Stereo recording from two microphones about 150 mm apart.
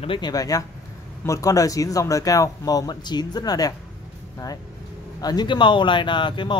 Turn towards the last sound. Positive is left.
turn(degrees=30)  # may be behind; listen again after turning